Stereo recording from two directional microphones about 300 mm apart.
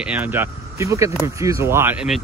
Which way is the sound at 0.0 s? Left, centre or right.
Centre.